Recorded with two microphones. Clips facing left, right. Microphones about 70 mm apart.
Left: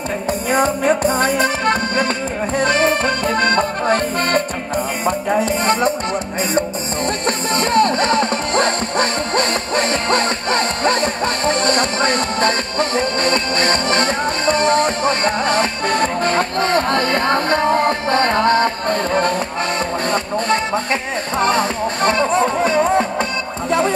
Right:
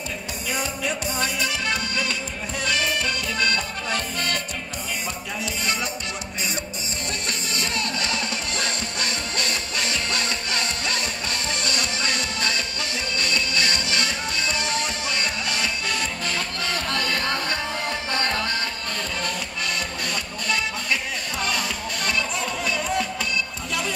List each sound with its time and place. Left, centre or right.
0.5 s music: left
7.2 s music: left
20.1 s speech: left